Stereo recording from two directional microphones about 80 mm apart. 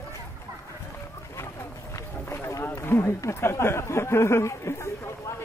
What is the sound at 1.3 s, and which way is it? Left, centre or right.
Run, left.